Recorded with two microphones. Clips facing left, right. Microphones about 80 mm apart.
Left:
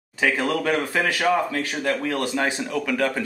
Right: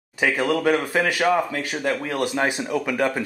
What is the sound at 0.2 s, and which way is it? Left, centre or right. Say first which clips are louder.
Speech: right 2 dB; centre.